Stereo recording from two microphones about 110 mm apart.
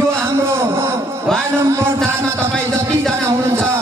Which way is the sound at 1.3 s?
5° left (ahead or behind).